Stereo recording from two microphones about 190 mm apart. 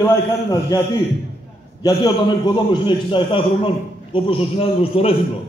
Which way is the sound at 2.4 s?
25° left (ahead or behind).